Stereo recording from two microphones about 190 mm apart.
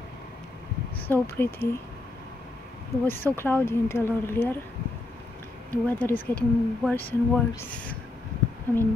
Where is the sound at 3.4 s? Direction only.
10° left (ahead or behind).